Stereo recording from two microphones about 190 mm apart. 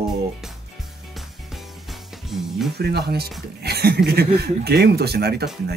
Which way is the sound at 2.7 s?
55° right (ahead or behind).